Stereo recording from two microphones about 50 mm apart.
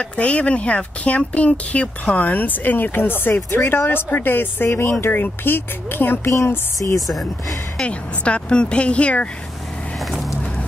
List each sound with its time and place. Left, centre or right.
0.0 s speech: left
7.8 s speech: left